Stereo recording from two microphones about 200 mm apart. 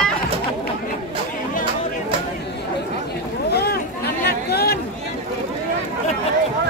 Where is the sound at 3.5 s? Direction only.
55° left (ahead or behind).